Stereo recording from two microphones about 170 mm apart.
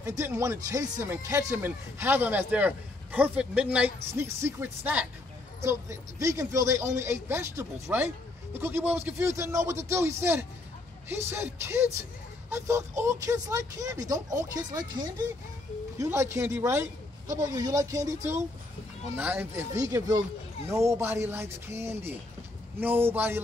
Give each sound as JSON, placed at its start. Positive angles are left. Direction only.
{"t": 0.2, "sound": "speech", "side_deg": -15}